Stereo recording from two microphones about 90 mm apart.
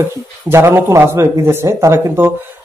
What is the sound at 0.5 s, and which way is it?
Speech, 30° right (ahead or behind).